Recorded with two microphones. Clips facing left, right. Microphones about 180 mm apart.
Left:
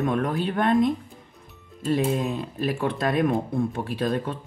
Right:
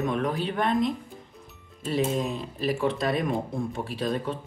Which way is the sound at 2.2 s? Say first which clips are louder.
Left 2 dB; 55° left (ahead or behind).